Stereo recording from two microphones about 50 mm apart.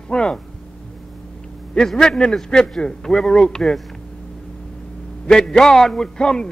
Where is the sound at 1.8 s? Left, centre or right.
Centre.